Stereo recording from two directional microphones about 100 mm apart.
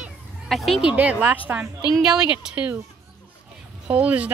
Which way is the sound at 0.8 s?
15° right (ahead or behind).